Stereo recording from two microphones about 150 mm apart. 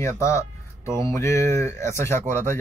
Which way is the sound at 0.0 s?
20° left (ahead or behind).